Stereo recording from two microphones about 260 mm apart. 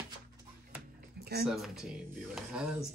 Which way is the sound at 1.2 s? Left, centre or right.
Right.